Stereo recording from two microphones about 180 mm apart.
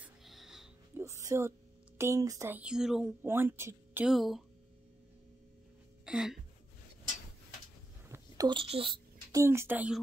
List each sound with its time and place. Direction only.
0.0 s music: centre (ahead or behind)
0.9 s speech: 15° right (ahead or behind)
4.1 s speech: centre (ahead or behind)
6.0 s a sound: 5° right (ahead or behind)
8.1 s a sound: 20° right (ahead or behind)
9.4 s speech: 15° right (ahead or behind)